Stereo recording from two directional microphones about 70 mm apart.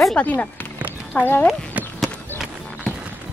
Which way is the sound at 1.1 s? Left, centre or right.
Left.